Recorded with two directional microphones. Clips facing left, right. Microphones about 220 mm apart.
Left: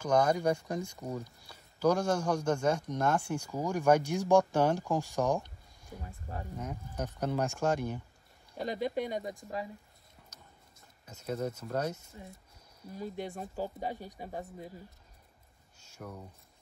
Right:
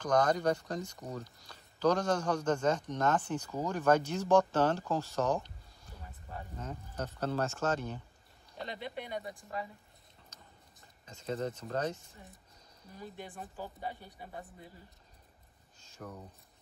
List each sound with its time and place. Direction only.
0.0 s speech: 10° left (ahead or behind)
8.6 s speech: 40° left (ahead or behind)
10.3 s a sound: 10° left (ahead or behind)
13.0 s speech: 40° left (ahead or behind)
16.0 s speech: centre (ahead or behind)